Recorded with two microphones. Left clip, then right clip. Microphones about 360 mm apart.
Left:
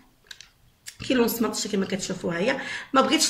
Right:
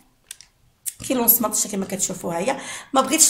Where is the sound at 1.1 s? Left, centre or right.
Centre.